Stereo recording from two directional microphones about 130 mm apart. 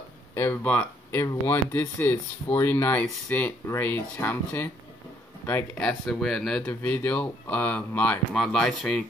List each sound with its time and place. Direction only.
0.3 s speech: 15° left (ahead or behind)
5.8 s speech: 5° left (ahead or behind)